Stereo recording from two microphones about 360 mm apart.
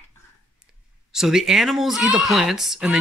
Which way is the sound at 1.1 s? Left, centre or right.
Centre.